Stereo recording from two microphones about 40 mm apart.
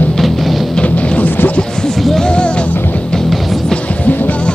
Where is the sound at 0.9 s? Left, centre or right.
Left.